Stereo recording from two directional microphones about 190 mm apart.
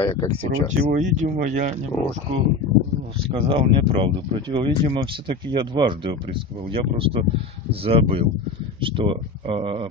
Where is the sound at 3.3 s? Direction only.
25° right (ahead or behind).